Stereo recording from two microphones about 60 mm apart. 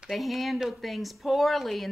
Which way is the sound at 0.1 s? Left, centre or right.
Centre.